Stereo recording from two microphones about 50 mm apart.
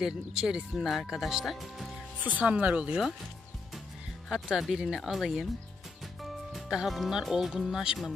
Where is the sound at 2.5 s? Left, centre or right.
Right.